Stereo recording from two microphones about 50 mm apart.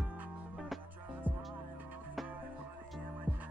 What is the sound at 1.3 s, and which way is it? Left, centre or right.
Music, right.